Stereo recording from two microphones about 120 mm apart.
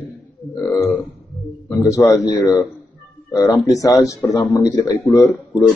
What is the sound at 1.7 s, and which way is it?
A man's voice, 25° left (ahead or behind).